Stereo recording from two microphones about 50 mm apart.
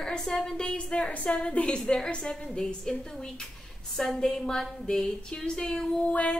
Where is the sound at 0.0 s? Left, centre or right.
Centre.